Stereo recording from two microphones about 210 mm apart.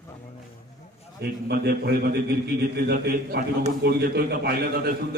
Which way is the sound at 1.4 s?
50° right (ahead or behind).